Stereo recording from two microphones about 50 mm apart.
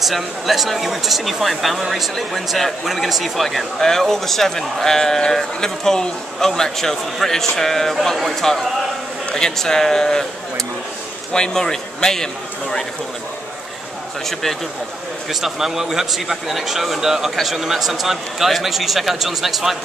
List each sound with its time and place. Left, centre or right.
0.0 s a man's voice: centre
11.3 s speech: centre
15.4 s a man's voice: centre